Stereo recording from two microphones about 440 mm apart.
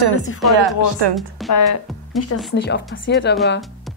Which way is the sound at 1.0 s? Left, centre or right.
Right.